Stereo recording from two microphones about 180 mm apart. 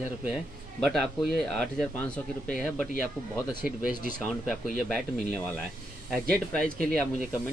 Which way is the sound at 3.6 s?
50° left (ahead or behind).